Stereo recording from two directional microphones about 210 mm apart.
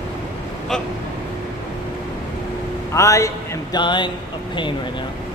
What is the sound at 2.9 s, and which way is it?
A man's voice, 15° left (ahead or behind).